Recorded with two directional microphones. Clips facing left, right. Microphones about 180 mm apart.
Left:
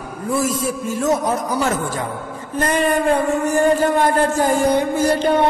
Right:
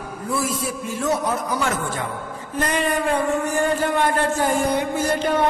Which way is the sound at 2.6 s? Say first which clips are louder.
Left 4 dB; 45° left (ahead or behind).